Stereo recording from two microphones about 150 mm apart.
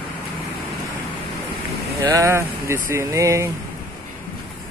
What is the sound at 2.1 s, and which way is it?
Speech, 20° right (ahead or behind).